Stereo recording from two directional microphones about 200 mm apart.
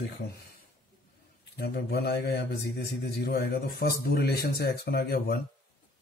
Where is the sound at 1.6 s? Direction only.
55° left (ahead or behind).